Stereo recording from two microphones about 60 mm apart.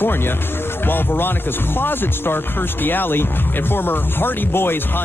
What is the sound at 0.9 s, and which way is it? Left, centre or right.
Speech, left.